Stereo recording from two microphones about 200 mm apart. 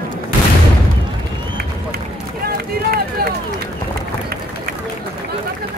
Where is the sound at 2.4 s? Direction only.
50° right (ahead or behind).